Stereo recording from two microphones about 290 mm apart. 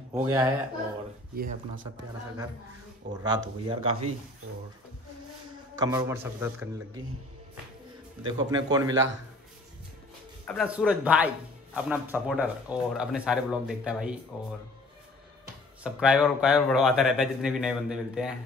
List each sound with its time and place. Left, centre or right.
0.1 s a man's voice: centre
1.3 s speech: right
3.1 s speech: right
5.8 s a man's voice: centre
8.2 s a man's voice: centre
10.4 s speech: centre
15.8 s speech: centre